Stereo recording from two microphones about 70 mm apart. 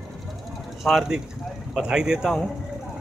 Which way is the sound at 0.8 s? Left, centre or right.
Centre.